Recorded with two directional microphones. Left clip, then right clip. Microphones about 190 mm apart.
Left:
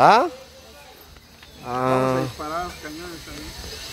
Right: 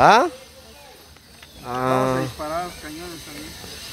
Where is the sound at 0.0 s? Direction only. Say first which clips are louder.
Right 1 dB; 15° right (ahead or behind).